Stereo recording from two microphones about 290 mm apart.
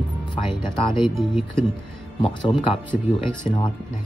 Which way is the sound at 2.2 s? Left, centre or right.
Centre.